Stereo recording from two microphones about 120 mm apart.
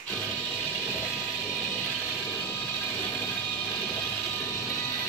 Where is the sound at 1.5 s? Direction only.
15° left (ahead or behind).